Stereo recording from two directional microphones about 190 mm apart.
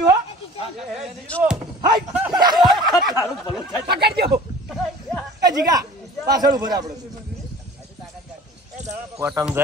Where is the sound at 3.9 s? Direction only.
60° right (ahead or behind).